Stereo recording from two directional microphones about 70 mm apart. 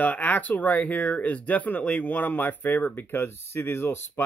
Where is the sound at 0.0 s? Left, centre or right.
Left.